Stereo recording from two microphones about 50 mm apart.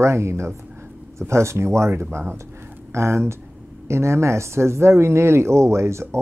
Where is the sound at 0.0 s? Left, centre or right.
Right.